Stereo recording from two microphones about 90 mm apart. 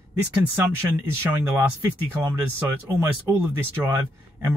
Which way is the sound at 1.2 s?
25° right (ahead or behind).